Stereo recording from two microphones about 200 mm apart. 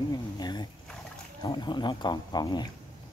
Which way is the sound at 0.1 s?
20° left (ahead or behind).